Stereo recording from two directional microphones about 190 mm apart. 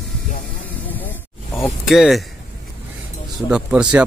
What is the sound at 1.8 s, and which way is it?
Speech, centre (ahead or behind).